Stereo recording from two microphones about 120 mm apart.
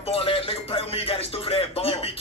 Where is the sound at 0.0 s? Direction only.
50° left (ahead or behind).